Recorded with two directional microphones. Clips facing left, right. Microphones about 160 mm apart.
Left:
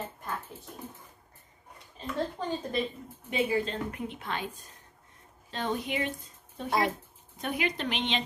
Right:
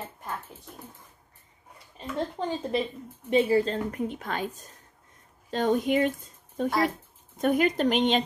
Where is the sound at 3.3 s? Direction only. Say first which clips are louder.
Right 6 dB; 35° right (ahead or behind).